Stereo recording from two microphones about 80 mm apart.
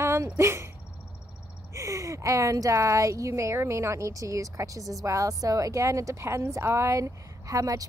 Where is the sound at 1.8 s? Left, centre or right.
Right.